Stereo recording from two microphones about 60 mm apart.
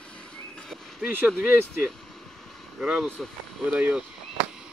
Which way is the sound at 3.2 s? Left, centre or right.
Centre.